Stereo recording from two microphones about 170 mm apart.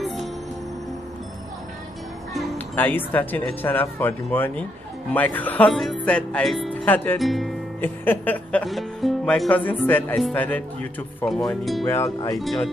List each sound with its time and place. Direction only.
0.0 s music: centre (ahead or behind)
2.7 s speech: 10° left (ahead or behind)
7.2 s speech: centre (ahead or behind)
7.8 s speech: 10° left (ahead or behind)
11.9 s speech: 15° left (ahead or behind)